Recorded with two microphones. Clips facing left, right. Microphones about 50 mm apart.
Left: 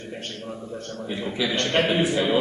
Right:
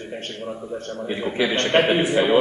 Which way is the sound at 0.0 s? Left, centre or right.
Centre.